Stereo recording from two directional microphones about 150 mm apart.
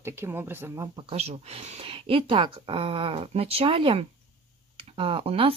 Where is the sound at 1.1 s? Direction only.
45° right (ahead or behind).